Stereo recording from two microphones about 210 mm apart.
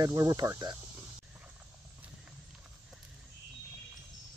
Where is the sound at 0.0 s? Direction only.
15° right (ahead or behind).